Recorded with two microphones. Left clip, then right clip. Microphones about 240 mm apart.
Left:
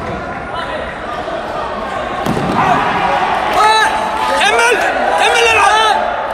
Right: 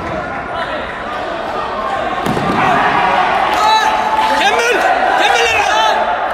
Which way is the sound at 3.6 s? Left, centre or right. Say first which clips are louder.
Left 2 dB; centre.